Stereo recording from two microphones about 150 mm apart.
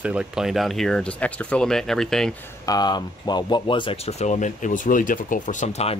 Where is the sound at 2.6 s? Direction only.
25° left (ahead or behind).